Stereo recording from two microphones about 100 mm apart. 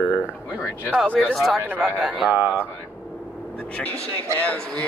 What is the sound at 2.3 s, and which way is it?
Speech, 15° right (ahead or behind).